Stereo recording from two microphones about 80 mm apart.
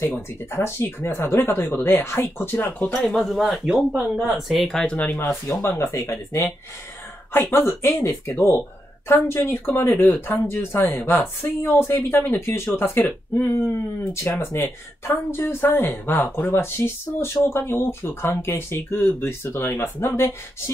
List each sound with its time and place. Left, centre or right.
0.1 s speech: left
2.9 s speech: centre
4.6 s speech: centre; by 6.5 s left
7.6 s speech: left